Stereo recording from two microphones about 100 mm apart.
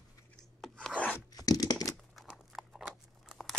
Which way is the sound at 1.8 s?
Centre (ahead or behind).